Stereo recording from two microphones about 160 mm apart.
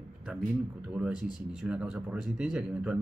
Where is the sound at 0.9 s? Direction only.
5° right (ahead or behind).